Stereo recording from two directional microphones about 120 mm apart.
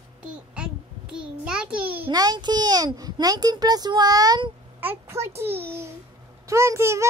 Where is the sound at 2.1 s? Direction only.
35° right (ahead or behind).